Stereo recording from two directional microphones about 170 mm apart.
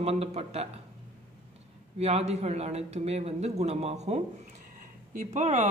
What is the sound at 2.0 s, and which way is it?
Speech, 40° right (ahead or behind).